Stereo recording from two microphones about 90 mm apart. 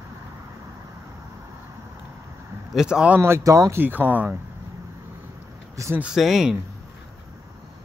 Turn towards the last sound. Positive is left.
turn(degrees=-5)  # may be behind; listen again after turning